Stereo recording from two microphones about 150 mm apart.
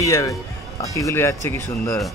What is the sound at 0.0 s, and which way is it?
Speech, 20° left (ahead or behind).